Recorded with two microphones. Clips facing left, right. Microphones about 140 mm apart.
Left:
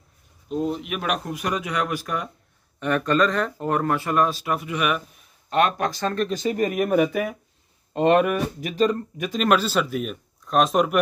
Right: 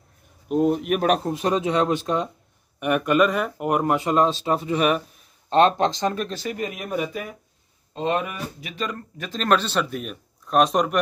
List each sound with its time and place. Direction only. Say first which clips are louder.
0.5 s speech: right 6 dB; 55° right (ahead or behind); by 2.2 s 25° right (ahead or behind)
2.8 s speech: right 2 dB; 15° right (ahead or behind)
6.5 s speech: left 7 dB; 50° left (ahead or behind); by 7.3 s 75° left (ahead or behind)
7.9 s speech: left 7 dB; 60° left (ahead or behind); by 8.9 s 40° left (ahead or behind)
8.9 s speech: left 5 dB; 15° left (ahead or behind)